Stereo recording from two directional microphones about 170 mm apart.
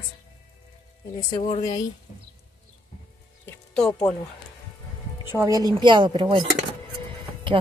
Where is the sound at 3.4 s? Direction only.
10° left (ahead or behind).